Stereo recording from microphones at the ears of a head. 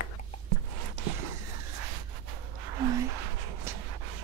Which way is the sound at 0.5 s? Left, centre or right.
Right.